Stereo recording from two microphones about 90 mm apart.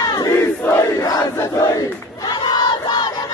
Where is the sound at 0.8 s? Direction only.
40° left (ahead or behind).